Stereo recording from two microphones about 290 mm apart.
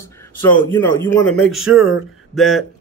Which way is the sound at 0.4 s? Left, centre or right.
Centre.